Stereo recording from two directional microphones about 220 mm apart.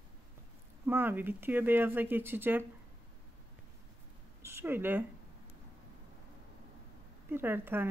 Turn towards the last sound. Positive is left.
turn(degrees=-10)  # may be behind; listen again after turning